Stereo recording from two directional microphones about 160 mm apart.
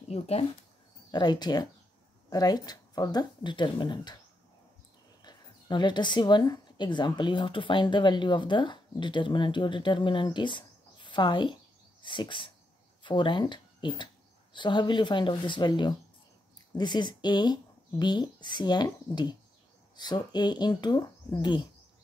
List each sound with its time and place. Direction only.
0.1 s speech: 40° left (ahead or behind)
1.1 s speech: 25° left (ahead or behind)
5.2 s speech: 30° left (ahead or behind)